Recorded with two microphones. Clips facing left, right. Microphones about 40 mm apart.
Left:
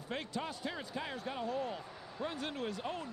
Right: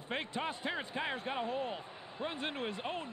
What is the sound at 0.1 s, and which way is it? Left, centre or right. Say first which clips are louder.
Speech: right 2 dB; right.